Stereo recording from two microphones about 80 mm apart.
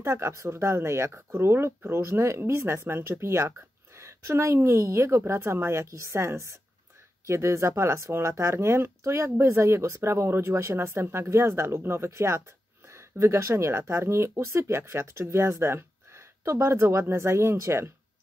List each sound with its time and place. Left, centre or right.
0.0 s speech: right